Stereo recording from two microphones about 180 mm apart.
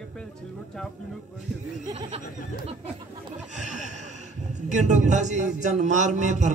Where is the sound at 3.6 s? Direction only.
40° right (ahead or behind).